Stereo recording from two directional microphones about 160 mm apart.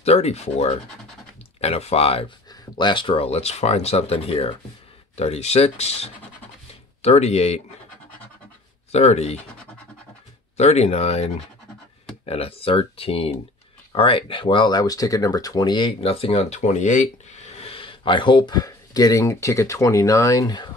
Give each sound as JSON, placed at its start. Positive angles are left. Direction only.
{"t": 0.0, "sound": "speech", "side_deg": 40}
{"t": 8.9, "sound": "speech", "side_deg": 45}
{"t": 10.6, "sound": "speech", "side_deg": 40}
{"t": 12.3, "sound": "speech", "side_deg": 35}